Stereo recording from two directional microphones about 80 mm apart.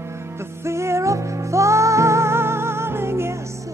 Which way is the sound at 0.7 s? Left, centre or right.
Right.